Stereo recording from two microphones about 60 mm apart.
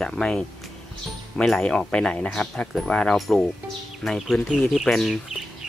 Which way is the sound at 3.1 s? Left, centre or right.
Centre.